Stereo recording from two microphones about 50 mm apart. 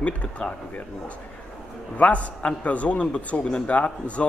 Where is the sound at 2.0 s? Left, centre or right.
Left.